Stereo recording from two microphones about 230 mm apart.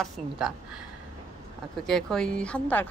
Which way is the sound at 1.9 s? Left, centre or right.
Centre.